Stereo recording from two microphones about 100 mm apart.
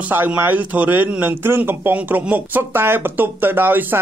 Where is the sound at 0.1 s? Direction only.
20° right (ahead or behind).